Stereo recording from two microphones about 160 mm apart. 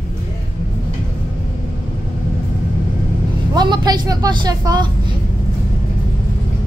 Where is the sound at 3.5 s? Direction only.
25° right (ahead or behind).